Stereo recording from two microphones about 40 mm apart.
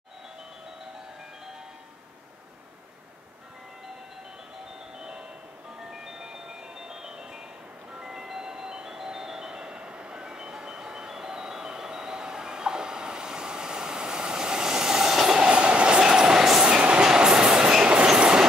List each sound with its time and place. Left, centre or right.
5.8 s music: centre
7.9 s train: centre
16.6 s train: right